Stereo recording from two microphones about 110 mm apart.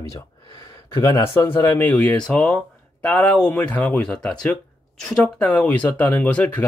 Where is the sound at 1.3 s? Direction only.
20° left (ahead or behind).